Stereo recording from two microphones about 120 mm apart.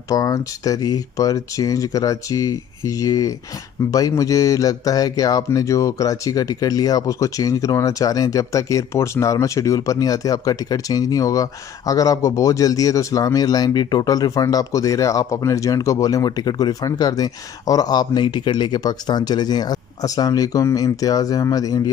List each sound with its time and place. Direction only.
0.1 s speech: 30° left (ahead or behind)